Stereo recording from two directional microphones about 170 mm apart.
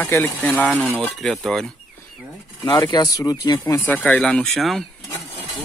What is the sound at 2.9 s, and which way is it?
Speech, 20° left (ahead or behind).